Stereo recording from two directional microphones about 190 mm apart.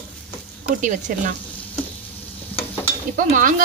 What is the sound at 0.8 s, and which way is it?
Speech, 40° right (ahead or behind).